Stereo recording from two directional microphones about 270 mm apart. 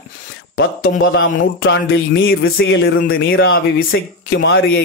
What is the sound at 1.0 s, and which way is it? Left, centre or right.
Speech, left.